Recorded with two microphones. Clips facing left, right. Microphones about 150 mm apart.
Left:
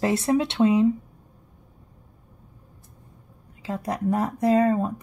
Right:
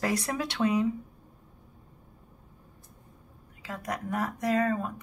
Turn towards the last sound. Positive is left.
turn(degrees=35)  # may be behind; listen again after turning